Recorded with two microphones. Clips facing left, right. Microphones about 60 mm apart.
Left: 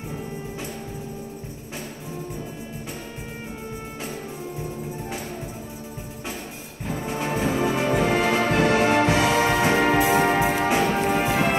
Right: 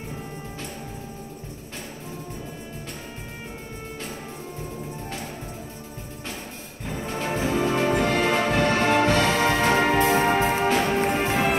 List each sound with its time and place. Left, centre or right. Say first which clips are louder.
6.9 s music: left 1 dB; centre